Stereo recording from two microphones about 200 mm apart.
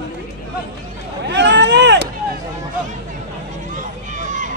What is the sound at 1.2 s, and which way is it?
Vehicle, 60° right (ahead or behind).